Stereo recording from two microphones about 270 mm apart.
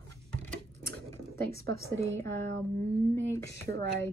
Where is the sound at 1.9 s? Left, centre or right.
Centre.